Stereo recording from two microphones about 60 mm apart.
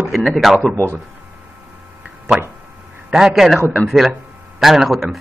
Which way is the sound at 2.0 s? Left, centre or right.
Centre.